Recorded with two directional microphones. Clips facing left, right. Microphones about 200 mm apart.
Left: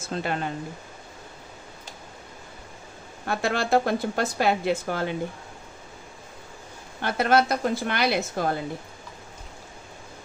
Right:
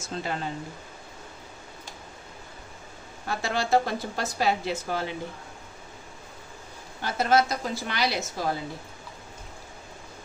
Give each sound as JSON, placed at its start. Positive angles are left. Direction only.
{"t": 0.0, "sound": "speech", "side_deg": 60}
{"t": 3.3, "sound": "speech", "side_deg": 55}
{"t": 7.0, "sound": "speech", "side_deg": 60}